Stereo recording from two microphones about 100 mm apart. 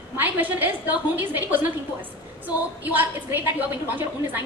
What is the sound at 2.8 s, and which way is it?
A man's voice, 15° right (ahead or behind).